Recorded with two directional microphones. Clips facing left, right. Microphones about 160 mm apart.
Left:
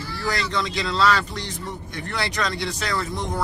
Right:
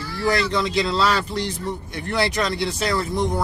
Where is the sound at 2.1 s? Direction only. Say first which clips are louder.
Right 5 dB; 30° right (ahead or behind).